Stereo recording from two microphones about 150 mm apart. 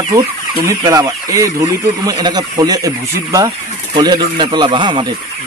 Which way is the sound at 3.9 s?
30° right (ahead or behind).